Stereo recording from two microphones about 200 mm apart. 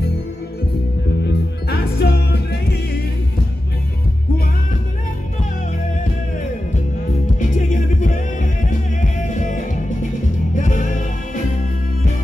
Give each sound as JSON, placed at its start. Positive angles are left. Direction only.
{"t": 1.2, "sound": "music", "side_deg": 55}
{"t": 7.3, "sound": "music", "side_deg": 40}